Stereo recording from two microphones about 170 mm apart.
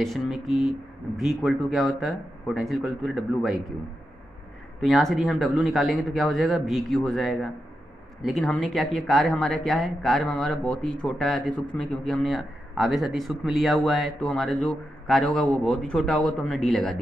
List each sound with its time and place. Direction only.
0.0 s a man's voice: centre (ahead or behind)
4.8 s a man's voice: centre (ahead or behind)